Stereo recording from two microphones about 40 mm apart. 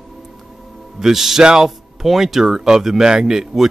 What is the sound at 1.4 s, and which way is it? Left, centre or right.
Speech, centre.